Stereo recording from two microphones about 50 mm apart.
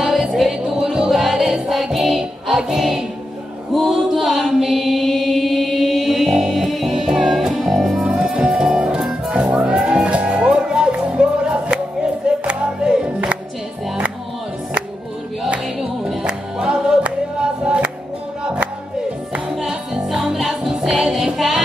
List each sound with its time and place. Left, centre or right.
0.0 s music: centre
3.7 s chant: centre
7.7 s music: centre; by 13.4 s right
15.8 s music: centre
17.0 s choir: right
18.4 s music: centre
19.7 s music: centre